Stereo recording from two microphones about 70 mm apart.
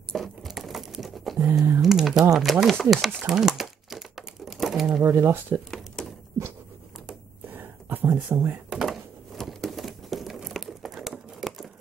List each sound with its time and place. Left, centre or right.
0.1 s patter: centre
1.4 s speech: right
1.8 s speech: centre
3.3 s crumpling: centre
5.1 s speech: right
7.4 s a sound: right
8.6 s crumpling: centre